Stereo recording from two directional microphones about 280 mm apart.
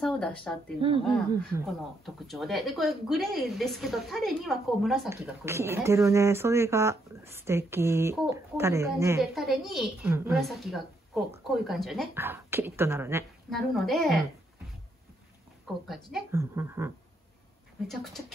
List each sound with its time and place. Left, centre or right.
0.0 s speech: centre
0.7 s speech: centre
1.7 s speech: centre
15.9 s speech: centre
17.8 s speech: centre